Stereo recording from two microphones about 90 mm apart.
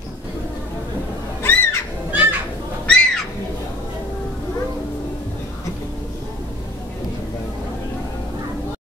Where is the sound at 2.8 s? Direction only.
10° left (ahead or behind).